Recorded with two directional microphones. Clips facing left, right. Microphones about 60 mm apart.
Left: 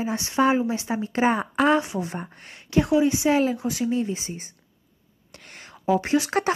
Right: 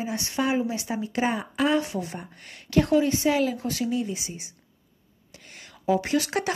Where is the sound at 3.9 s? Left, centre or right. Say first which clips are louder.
Left 3 dB; left.